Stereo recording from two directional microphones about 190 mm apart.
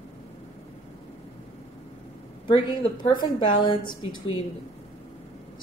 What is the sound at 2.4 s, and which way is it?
A woman's voice, 25° left (ahead or behind).